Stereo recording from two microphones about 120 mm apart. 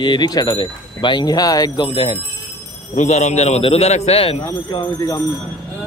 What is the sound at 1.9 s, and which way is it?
Speech, 50° left (ahead or behind).